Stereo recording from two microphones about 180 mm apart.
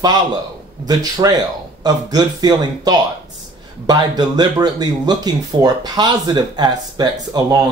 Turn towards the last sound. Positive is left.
turn(degrees=-20)  # may be behind; listen again after turning